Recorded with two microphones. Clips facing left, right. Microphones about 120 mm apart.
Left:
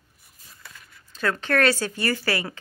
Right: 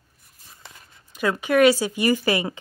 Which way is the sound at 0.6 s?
25° right (ahead or behind).